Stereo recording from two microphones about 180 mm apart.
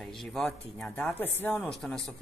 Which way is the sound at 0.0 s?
Centre (ahead or behind).